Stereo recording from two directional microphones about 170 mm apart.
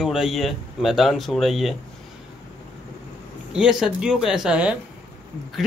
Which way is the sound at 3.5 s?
5° right (ahead or behind).